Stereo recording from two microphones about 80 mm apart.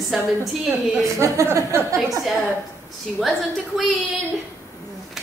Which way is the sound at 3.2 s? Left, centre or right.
Centre.